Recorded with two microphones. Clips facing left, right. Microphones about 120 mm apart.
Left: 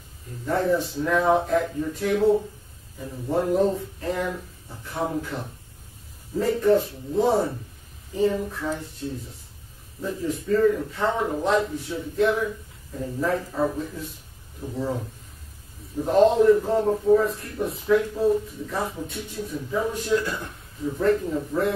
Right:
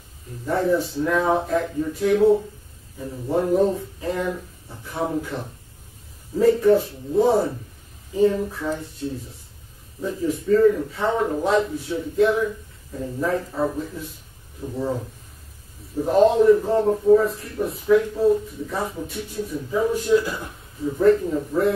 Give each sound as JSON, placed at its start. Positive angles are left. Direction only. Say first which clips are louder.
{"t": 0.5, "sound": "a man's voice", "louder": "right 2 dB", "side_deg": -5}
{"t": 3.3, "sound": "a man's voice", "louder": "right 2 dB", "side_deg": 0}
{"t": 10.0, "sound": "a man's voice", "louder": "right 4 dB", "side_deg": 0}